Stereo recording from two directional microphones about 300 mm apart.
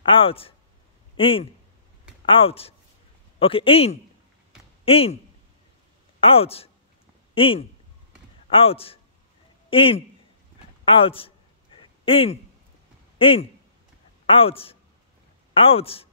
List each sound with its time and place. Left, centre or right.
0.0 s speech: centre
6.2 s a man's voice: centre
11.8 s a sound: centre
13.2 s a woman's voice: centre